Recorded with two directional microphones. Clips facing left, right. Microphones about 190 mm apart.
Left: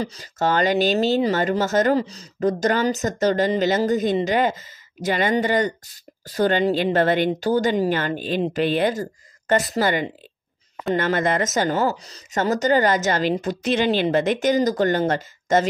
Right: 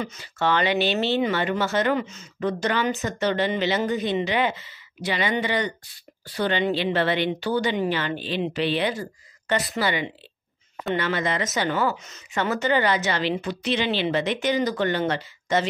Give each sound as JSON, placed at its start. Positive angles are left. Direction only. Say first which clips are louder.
{"t": 0.0, "sound": "speech", "louder": "left 3 dB", "side_deg": 35}